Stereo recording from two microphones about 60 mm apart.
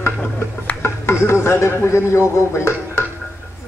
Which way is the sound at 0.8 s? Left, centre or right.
Left.